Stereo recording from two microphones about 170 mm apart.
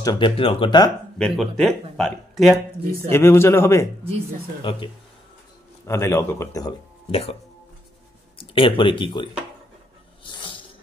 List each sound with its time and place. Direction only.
0.0 s speech: 20° left (ahead or behind)
1.1 s speech: centre (ahead or behind)
3.1 s speech: 15° left (ahead or behind)
4.6 s speech: 30° left (ahead or behind)
5.9 s speech: 15° left (ahead or behind)
7.1 s speech: 35° left (ahead or behind)
8.4 s speech: 30° left (ahead or behind)
10.2 s snake: 30° left (ahead or behind)